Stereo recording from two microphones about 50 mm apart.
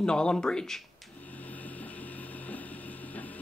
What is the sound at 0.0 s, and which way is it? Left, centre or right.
Speech, centre.